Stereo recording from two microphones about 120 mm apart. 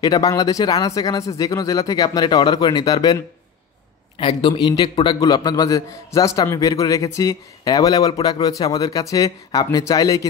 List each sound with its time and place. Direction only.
0.0 s speech: 30° left (ahead or behind)
4.2 s a man's voice: 45° left (ahead or behind); by 10.2 s 30° left (ahead or behind)